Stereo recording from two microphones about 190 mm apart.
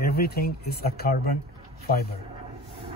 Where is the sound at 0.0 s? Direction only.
55° left (ahead or behind).